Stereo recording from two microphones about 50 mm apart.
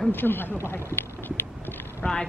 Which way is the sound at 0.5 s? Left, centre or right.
Left.